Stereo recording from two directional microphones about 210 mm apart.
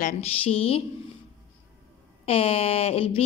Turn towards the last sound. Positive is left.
turn(degrees=30)  # may be behind; listen again after turning